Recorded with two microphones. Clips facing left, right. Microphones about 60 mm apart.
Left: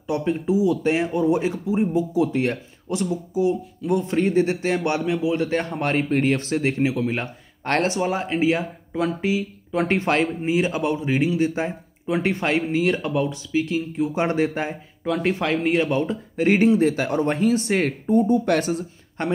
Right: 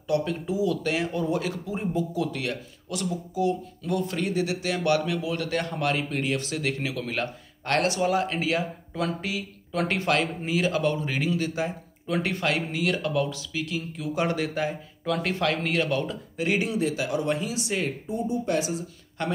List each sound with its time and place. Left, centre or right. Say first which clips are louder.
0.0 s speech: left 3 dB; left
16.3 s speech: left 9 dB; left
19.2 s speech: left 5 dB; left